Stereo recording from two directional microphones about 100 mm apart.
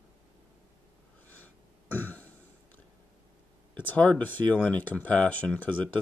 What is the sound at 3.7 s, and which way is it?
Speech, 15° left (ahead or behind).